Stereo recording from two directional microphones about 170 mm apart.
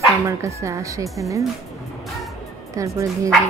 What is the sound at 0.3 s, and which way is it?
Speech, 15° right (ahead or behind).